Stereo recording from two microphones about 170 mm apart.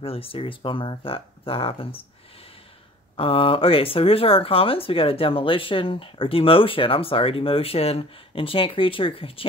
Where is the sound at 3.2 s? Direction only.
35° left (ahead or behind).